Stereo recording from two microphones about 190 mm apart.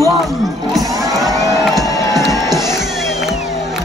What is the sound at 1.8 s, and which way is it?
Music, 15° left (ahead or behind).